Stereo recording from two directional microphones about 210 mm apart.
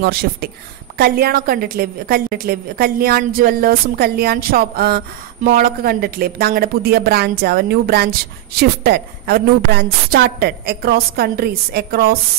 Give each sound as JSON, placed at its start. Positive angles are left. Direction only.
{"t": 0.0, "sound": "a woman's voice", "side_deg": -45}